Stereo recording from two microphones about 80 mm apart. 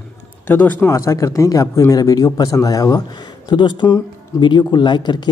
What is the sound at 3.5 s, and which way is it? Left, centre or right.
Speech, left.